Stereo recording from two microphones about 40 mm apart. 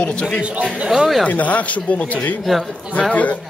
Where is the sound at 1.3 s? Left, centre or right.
Left.